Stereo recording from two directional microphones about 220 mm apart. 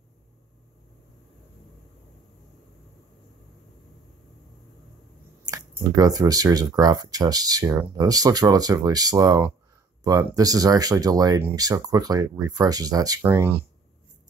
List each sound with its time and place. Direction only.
5.4 s speech: 15° right (ahead or behind)